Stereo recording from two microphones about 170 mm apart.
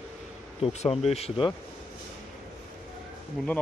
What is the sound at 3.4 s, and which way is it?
Speech, centre (ahead or behind).